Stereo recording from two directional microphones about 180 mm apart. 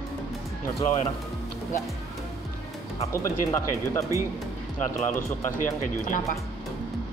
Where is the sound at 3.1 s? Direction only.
15° left (ahead or behind).